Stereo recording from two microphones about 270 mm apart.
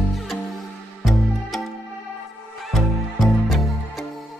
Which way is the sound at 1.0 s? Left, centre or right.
Centre.